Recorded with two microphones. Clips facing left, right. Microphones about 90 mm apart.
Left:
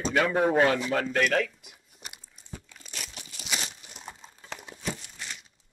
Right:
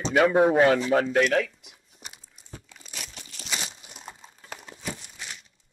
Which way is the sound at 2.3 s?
10° right (ahead or behind).